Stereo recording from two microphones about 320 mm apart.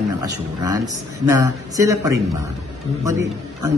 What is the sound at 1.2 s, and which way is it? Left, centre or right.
Speech, centre.